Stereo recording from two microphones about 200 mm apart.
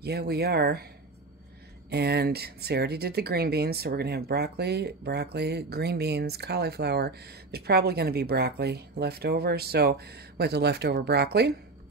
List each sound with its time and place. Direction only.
0.0 s speech: 55° right (ahead or behind)
1.9 s speech: 55° right (ahead or behind)